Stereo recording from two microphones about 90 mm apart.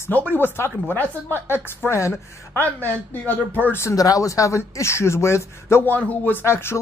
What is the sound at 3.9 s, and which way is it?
A woman's voice, 40° left (ahead or behind).